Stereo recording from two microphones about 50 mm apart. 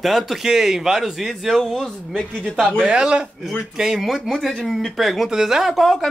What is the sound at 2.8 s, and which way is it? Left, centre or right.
A man's voice, centre.